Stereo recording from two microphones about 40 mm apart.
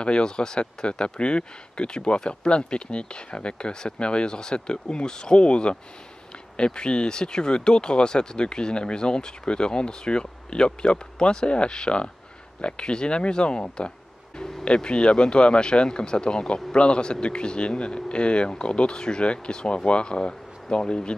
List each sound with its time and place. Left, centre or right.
0.0 s speech: left